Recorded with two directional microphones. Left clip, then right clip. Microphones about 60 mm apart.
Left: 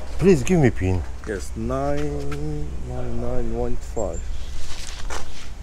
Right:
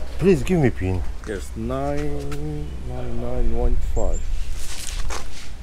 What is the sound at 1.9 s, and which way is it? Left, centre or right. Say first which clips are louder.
Speech: left 1 dB; centre.